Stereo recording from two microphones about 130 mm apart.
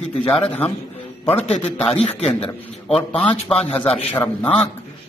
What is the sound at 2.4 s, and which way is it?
A man's voice, 45° left (ahead or behind).